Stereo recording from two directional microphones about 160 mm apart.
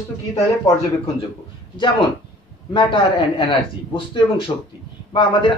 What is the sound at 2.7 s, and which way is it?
A man's voice, 30° left (ahead or behind).